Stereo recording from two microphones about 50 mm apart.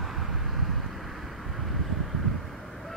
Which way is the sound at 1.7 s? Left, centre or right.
Centre.